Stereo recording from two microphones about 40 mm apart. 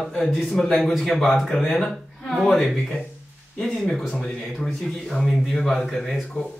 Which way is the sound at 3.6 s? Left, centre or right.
Centre.